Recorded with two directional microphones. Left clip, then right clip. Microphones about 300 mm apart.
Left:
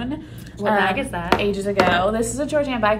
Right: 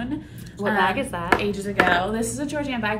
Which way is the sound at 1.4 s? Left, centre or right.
Centre.